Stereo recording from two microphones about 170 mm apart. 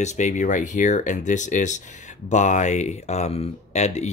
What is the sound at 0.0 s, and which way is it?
Speech, 45° left (ahead or behind).